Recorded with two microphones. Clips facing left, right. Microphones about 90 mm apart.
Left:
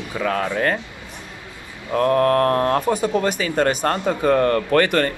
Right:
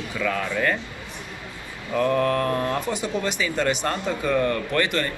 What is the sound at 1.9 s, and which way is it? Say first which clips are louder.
Speech: left 5 dB; 45° left (ahead or behind).